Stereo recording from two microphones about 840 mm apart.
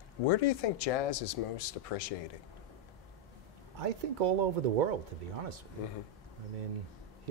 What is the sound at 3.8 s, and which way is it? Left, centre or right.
Speech, right.